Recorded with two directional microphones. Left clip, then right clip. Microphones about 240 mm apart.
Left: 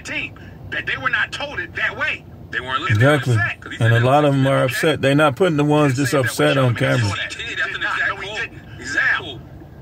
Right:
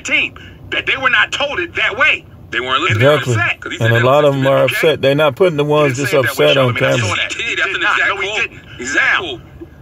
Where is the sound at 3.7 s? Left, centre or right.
Centre.